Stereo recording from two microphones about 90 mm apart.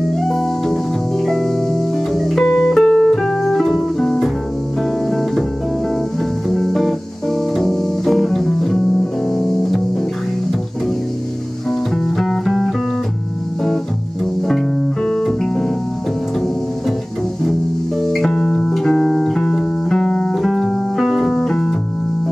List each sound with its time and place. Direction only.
0.3 s music: centre (ahead or behind)
6.5 s music: centre (ahead or behind)
12.2 s music: centre (ahead or behind)
15.0 s music: 10° left (ahead or behind)
18.1 s music: 5° left (ahead or behind)